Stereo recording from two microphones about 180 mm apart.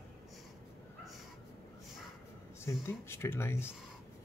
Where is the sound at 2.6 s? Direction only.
15° left (ahead or behind).